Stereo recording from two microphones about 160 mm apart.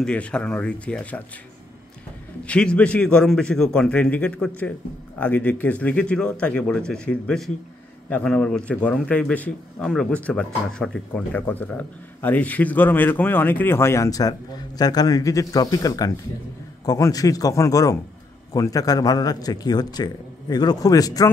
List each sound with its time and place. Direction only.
0.0 s a man's voice: 5° left (ahead or behind)
2.4 s a man's voice: 5° left (ahead or behind); by 21.3 s 20° left (ahead or behind)